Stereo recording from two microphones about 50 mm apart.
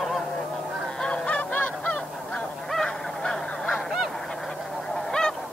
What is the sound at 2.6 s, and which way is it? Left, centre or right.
Honk, centre.